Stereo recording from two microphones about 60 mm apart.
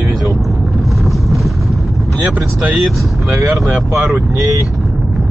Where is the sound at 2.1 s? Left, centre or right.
Right.